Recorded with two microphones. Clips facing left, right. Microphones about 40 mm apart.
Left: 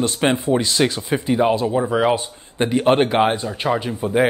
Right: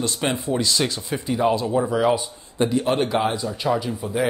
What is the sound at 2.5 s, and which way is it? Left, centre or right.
Speech, left.